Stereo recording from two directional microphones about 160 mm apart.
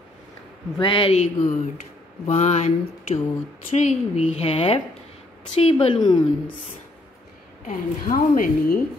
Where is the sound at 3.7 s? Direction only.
45° left (ahead or behind).